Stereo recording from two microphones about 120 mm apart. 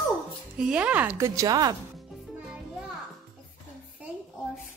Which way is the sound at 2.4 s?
5° right (ahead or behind).